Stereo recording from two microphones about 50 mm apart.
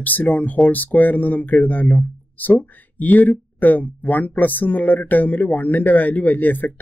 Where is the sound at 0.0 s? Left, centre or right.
Left.